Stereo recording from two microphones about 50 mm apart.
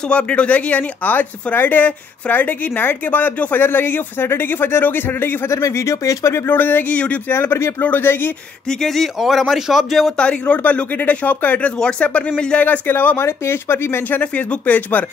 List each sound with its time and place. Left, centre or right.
0.1 s speech: left
5.5 s speech: left
6.5 s speech: left
7.2 s speech: left
7.8 s speech: left
8.6 s speech: centre
10.1 s speech: left
12.6 s speech: left
13.2 s speech: left
14.2 s speech: left